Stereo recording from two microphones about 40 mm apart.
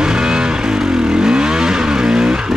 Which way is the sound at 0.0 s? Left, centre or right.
Right.